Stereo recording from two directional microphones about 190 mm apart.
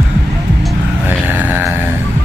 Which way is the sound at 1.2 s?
10° right (ahead or behind).